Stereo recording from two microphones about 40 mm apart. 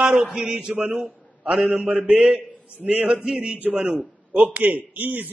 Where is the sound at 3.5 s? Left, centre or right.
Right.